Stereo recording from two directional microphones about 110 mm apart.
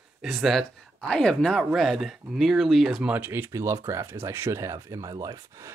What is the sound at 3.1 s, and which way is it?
Speech, 15° right (ahead or behind).